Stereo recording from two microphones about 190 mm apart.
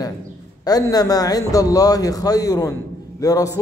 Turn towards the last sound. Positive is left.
turn(degrees=20)  # may be behind; listen again after turning